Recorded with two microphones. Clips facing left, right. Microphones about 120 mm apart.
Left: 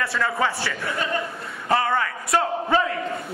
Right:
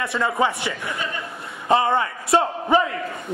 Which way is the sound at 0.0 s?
20° right (ahead or behind).